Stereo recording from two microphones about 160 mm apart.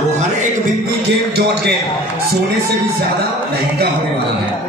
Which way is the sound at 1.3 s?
90° right.